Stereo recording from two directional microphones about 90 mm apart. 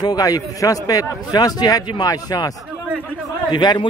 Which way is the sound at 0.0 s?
45° left (ahead or behind).